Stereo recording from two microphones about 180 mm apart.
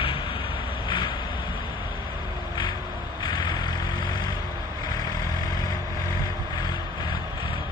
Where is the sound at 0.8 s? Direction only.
25° left (ahead or behind).